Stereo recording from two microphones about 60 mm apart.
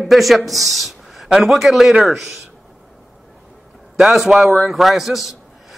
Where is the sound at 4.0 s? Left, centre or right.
Centre.